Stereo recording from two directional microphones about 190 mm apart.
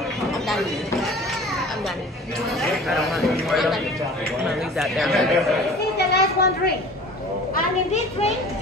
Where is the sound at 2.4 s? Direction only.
Centre (ahead or behind).